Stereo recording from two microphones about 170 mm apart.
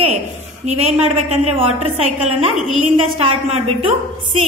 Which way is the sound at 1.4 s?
35° right (ahead or behind).